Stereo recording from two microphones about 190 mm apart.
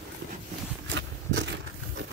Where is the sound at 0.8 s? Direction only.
70° right (ahead or behind).